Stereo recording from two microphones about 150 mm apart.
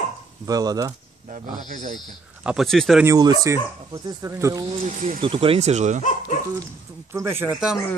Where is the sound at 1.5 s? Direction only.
60° right (ahead or behind).